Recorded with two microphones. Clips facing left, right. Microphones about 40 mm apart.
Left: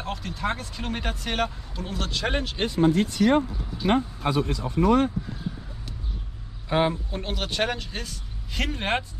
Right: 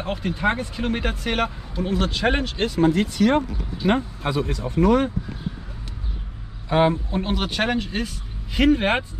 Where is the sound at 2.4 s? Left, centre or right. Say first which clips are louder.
Right 3 dB; centre.